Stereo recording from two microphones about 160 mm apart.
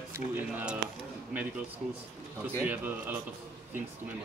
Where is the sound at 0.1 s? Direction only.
10° right (ahead or behind).